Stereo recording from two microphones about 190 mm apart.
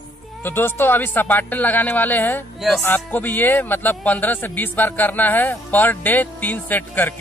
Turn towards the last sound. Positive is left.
turn(degrees=10)  # may be behind; listen again after turning